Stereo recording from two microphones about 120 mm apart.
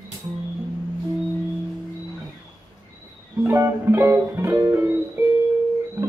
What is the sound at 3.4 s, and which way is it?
Music, 25° right (ahead or behind).